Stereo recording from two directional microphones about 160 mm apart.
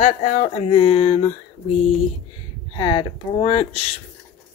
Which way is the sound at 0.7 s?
35° left (ahead or behind).